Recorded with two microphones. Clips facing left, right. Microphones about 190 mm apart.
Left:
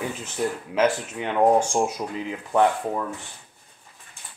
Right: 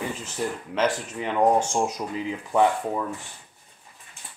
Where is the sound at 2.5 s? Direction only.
Centre (ahead or behind).